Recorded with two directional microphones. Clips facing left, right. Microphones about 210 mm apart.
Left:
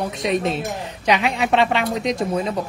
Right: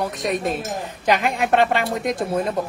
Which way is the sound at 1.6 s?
55° right (ahead or behind).